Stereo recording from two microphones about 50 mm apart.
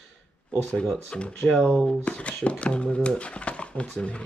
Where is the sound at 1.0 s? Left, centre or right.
Left.